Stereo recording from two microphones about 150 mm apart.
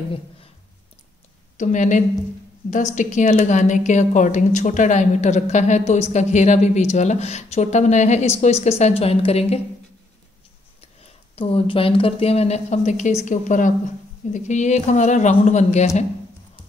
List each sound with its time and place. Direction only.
1.6 s a woman's voice: 55° left (ahead or behind)
10.8 s a woman's voice: 40° left (ahead or behind)